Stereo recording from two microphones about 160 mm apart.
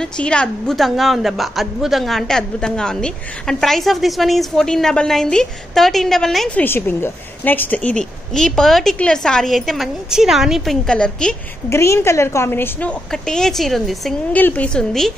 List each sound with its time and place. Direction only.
0.2 s a woman's voice: 5° left (ahead or behind)
6.6 s a woman's voice: 15° left (ahead or behind)
11.7 s a woman's voice: 15° left (ahead or behind)
13.1 s a woman's voice: 5° left (ahead or behind)